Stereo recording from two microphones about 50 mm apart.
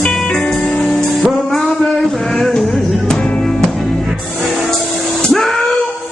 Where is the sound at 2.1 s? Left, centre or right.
Centre.